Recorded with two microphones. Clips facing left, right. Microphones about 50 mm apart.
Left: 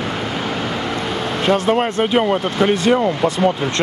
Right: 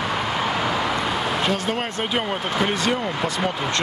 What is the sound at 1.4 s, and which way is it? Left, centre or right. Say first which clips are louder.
Speech: left 8 dB; left.